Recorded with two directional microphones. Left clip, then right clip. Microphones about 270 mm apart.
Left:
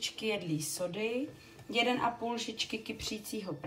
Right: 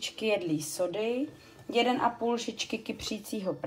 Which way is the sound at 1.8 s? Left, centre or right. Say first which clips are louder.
Right 3 dB; right.